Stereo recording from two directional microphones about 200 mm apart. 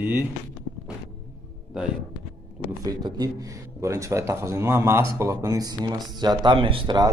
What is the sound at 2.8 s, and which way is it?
A man's voice, 20° right (ahead or behind).